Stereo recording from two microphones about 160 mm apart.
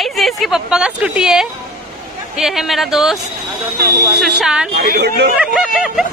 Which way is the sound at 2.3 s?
Centre (ahead or behind).